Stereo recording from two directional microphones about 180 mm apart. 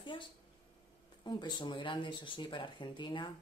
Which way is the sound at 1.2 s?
25° left (ahead or behind).